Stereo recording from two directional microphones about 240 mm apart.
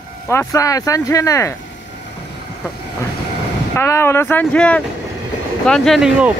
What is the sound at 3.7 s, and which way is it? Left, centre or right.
Speech, centre.